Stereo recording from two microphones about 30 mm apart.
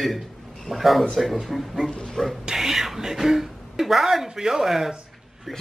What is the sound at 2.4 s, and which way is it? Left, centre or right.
Speech, centre.